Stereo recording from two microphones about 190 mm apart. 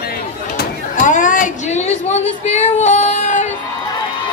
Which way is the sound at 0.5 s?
50° left (ahead or behind).